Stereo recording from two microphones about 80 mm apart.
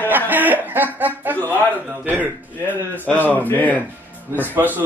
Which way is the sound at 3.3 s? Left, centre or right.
Centre.